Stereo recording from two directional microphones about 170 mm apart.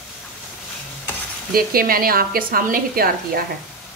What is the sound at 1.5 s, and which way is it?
A woman's voice, 60° right (ahead or behind).